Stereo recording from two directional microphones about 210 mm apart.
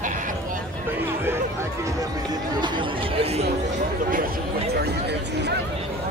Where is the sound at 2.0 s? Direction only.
20° right (ahead or behind); by 5.5 s 55° right (ahead or behind).